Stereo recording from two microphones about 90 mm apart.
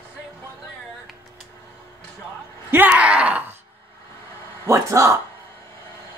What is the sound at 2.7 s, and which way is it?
Groan, 20° right (ahead or behind).